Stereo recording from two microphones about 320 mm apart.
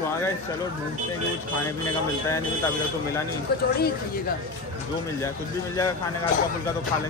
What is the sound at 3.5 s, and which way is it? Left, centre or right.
Speech, left.